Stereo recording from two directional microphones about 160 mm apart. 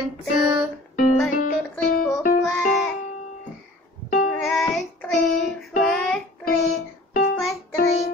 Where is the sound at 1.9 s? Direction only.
60° left (ahead or behind).